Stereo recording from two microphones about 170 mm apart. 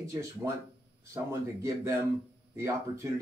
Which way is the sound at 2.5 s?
15° right (ahead or behind).